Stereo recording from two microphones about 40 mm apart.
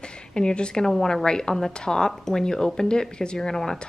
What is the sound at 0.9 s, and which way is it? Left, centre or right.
Speech, centre.